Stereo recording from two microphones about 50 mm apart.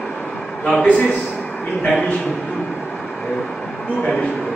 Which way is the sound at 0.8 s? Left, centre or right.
Left.